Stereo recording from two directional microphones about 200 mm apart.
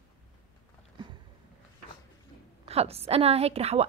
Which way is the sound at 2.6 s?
30° right (ahead or behind).